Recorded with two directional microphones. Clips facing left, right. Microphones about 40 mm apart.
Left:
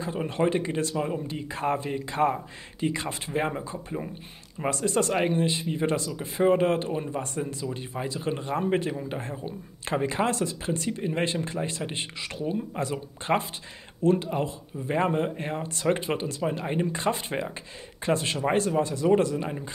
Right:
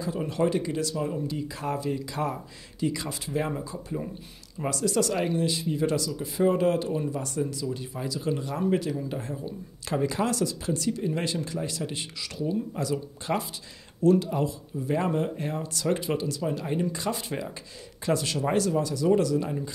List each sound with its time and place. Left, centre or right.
0.0 s speech: left